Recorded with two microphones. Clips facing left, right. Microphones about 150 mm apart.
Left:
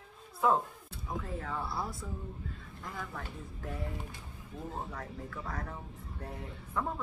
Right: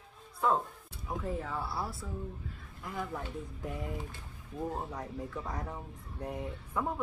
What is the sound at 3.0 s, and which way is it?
Speech, 20° right (ahead or behind).